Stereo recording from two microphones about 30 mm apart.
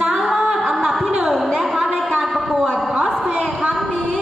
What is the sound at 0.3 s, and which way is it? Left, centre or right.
Music, centre.